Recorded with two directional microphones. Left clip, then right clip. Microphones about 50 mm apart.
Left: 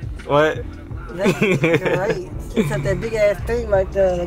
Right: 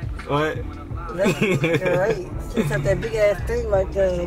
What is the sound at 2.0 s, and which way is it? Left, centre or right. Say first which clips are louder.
Speech: left 1 dB; centre.